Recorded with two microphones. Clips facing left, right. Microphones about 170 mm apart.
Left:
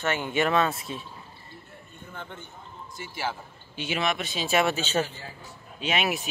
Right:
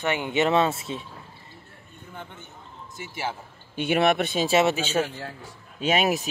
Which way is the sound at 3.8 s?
60° right (ahead or behind).